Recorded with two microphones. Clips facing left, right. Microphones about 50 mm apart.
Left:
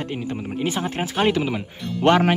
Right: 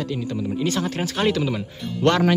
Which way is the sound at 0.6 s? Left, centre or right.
Centre.